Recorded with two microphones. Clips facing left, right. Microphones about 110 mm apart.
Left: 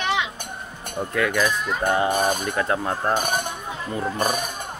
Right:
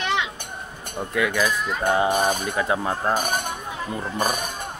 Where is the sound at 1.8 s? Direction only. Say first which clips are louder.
Right 1 dB; 15° right (ahead or behind).